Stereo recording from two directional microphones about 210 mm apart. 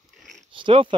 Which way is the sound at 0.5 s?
25° right (ahead or behind).